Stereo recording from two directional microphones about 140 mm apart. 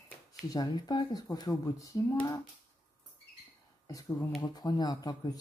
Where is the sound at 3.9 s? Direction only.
25° left (ahead or behind).